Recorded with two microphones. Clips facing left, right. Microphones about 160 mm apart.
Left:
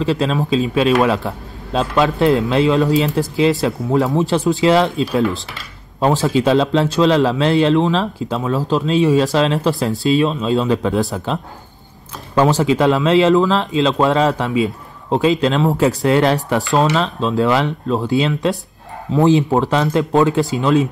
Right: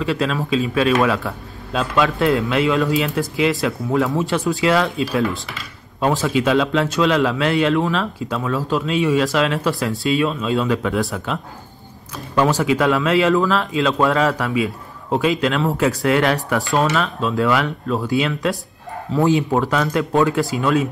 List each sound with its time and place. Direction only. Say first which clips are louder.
0.0 s speech: left 3 dB; 25° left (ahead or behind)